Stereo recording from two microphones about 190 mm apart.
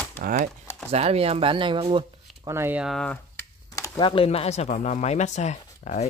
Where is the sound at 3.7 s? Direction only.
20° left (ahead or behind).